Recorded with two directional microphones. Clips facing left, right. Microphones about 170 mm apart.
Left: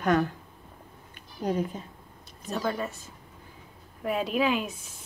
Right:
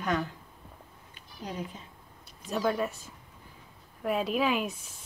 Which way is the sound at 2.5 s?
5° right (ahead or behind).